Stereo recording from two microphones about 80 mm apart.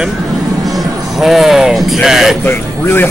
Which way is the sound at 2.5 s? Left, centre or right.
Left.